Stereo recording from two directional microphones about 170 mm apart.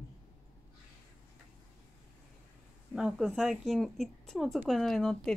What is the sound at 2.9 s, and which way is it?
Speech, centre (ahead or behind).